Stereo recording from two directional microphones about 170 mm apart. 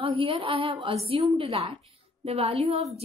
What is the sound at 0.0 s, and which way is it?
A woman's voice, 35° right (ahead or behind).